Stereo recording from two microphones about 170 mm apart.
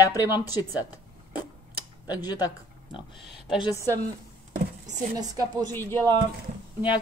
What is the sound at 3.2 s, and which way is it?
Speech, centre (ahead or behind).